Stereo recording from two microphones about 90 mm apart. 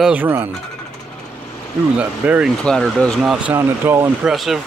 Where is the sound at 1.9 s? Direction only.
15° right (ahead or behind).